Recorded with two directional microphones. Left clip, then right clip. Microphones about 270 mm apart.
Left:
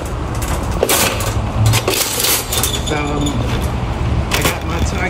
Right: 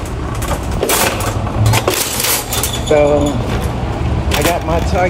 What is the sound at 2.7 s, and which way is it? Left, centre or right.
Mechanisms, centre.